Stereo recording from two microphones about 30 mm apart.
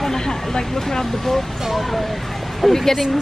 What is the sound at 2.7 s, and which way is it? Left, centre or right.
Speech, centre.